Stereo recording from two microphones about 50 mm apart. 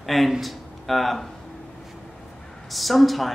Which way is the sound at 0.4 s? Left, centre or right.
Centre.